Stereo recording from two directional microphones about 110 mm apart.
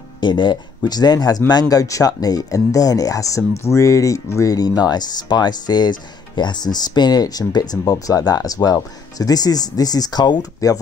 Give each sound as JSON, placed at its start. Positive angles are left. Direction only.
{"t": 0.2, "sound": "speech", "side_deg": 45}